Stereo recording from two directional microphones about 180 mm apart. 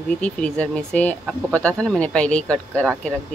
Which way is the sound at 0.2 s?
5° left (ahead or behind).